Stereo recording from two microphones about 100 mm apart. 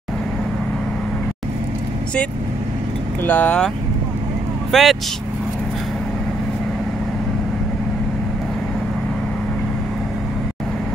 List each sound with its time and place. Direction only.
3.3 s speech: 15° left (ahead or behind)
4.6 s speech: centre (ahead or behind)